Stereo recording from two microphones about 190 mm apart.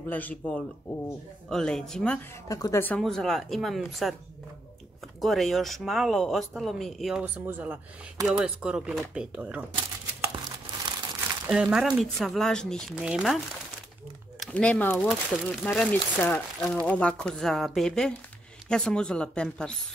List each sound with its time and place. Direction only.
0.1 s speech: 10° left (ahead or behind)
2.4 s speech: 20° left (ahead or behind); by 4.1 s centre (ahead or behind)
5.2 s speech: centre (ahead or behind)
10.9 s crumpling: 25° right (ahead or behind)
11.4 s speech: 5° right (ahead or behind)
14.4 s speech: 5° left (ahead or behind)